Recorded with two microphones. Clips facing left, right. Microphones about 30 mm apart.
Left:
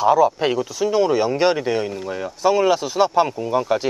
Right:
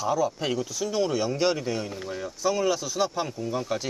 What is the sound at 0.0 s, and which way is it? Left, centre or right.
Speech, left.